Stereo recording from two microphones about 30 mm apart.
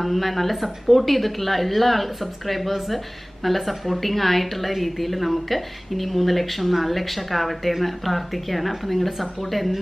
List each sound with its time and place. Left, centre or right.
0.0 s a woman's voice: centre